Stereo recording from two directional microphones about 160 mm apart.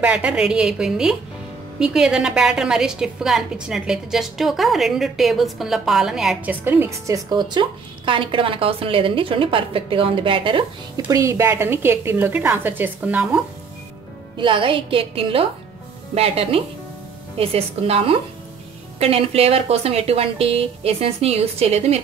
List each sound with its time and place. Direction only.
0.0 s a woman's voice: 10° right (ahead or behind)
7.2 s a woman's voice: 30° right (ahead or behind)
11.1 s a woman's voice: 20° right (ahead or behind)
14.3 s a woman's voice: 30° right (ahead or behind)